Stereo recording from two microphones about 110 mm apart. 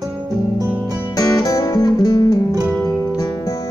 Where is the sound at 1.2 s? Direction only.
30° left (ahead or behind).